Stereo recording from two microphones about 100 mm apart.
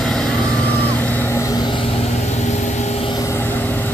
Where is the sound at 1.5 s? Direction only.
50° left (ahead or behind).